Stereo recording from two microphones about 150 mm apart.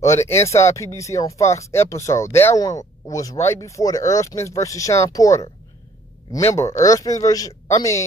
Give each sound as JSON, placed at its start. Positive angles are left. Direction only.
{"t": 0.0, "sound": "speech", "side_deg": 20}